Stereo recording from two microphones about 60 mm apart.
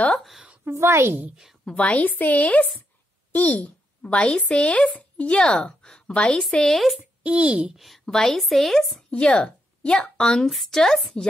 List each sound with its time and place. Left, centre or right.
0.1 s a woman's voice: centre
0.7 s a woman's voice: right
1.3 s a woman's voice: centre
1.6 s speech: centre
7.2 s speech: centre
7.7 s a woman's voice: centre
9.2 s a woman's voice: centre